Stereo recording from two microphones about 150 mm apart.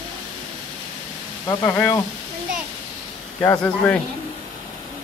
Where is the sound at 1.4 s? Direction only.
25° left (ahead or behind).